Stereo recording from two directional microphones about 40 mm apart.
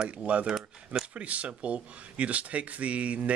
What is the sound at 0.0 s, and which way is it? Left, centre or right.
Speech, right.